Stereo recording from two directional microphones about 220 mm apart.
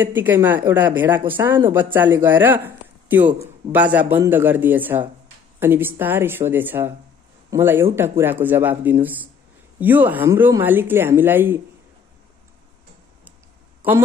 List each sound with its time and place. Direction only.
0.0 s a man's voice: 10° right (ahead or behind)
13.8 s a man's voice: 10° right (ahead or behind)